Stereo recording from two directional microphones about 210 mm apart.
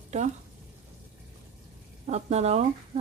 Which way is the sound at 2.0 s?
30° right (ahead or behind).